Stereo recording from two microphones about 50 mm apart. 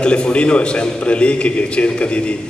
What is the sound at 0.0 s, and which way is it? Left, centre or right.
A man's voice, centre.